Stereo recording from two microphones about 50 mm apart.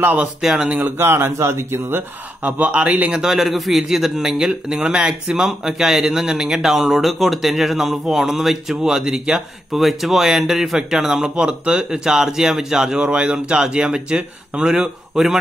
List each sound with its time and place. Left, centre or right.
0.0 s speech: right
0.9 s speech: right
2.4 s speech: right
3.1 s speech: centre
13.0 s speech: right